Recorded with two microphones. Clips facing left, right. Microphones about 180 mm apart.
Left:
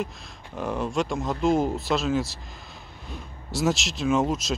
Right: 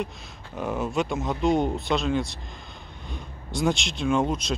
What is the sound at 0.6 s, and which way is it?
Speech, centre (ahead or behind).